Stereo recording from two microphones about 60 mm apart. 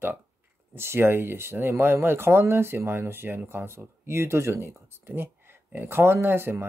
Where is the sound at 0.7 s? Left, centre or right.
Right.